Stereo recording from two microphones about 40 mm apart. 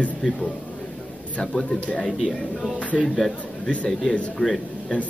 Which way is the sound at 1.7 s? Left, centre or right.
Left.